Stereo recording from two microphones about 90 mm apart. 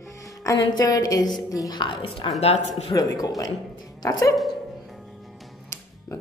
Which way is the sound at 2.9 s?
45° left (ahead or behind).